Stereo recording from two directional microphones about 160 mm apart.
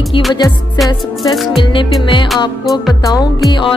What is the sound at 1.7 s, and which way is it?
Music, 30° left (ahead or behind).